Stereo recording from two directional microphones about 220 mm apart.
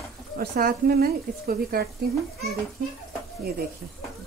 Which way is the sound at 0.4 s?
40° right (ahead or behind).